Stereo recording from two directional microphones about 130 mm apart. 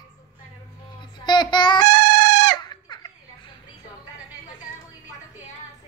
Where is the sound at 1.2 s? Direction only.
35° left (ahead or behind).